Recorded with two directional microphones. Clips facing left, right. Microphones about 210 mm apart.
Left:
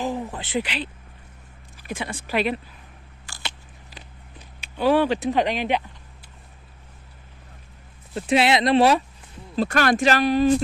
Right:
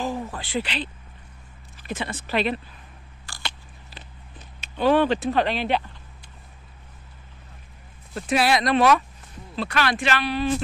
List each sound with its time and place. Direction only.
0.0 s a sound: 20° left (ahead or behind)
1.8 s speech: 10° left (ahead or behind)
3.3 s biting: 10° left (ahead or behind)
8.1 s speech: 25° left (ahead or behind)
9.6 s speech: 45° left (ahead or behind)